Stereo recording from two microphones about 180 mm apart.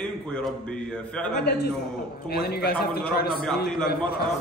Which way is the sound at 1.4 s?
60° left (ahead or behind).